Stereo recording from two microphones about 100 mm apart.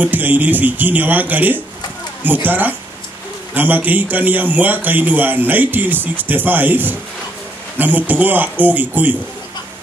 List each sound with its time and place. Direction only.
0.0 s a man's voice: 20° right (ahead or behind)